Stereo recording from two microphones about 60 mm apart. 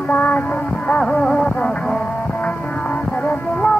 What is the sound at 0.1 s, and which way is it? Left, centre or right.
Music, left.